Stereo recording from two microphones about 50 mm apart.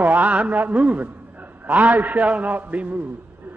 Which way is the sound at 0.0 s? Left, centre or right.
Right.